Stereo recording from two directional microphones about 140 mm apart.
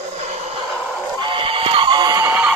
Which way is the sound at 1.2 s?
40° right (ahead or behind).